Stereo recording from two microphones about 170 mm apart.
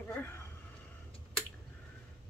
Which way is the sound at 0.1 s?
15° left (ahead or behind).